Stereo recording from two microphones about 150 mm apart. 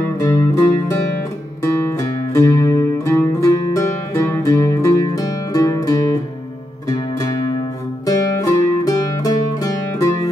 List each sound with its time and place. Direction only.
0.0 s music: 20° left (ahead or behind)